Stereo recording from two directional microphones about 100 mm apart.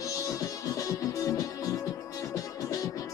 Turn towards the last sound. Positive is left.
turn(degrees=35)  # may be behind; listen again after turning